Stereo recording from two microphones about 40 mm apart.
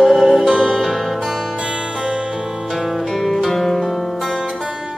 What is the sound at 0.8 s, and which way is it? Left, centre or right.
Music, centre.